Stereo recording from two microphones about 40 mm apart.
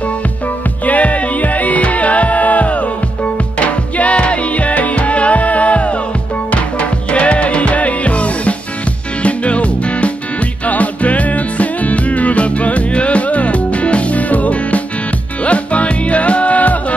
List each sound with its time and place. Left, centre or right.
0.8 s music: left